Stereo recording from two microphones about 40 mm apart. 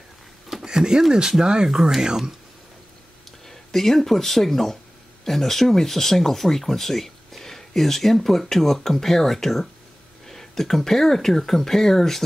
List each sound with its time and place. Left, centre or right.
0.7 s speech: centre
1.7 s speech: centre
3.4 s speech: centre